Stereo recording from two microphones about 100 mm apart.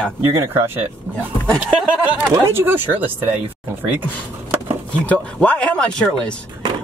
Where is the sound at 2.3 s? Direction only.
25° right (ahead or behind).